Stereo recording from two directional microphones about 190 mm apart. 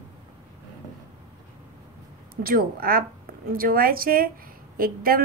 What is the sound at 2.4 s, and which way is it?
A woman's voice, 50° right (ahead or behind).